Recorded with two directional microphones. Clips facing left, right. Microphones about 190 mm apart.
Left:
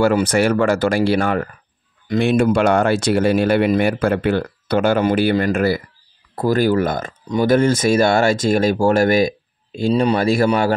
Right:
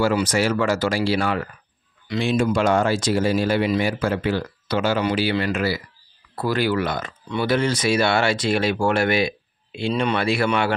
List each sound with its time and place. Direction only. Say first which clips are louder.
0.0 s speech: left 5 dB; 55° left (ahead or behind); by 10.7 s 40° left (ahead or behind)